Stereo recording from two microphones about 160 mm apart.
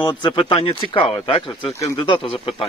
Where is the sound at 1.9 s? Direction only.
30° left (ahead or behind).